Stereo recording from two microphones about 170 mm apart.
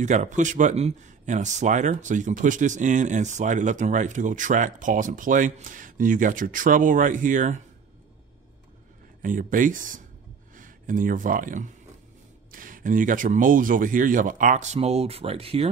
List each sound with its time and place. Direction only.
0.0 s speech: 45° right (ahead or behind)
9.2 s speech: 50° right (ahead or behind); by 15.7 s 35° right (ahead or behind)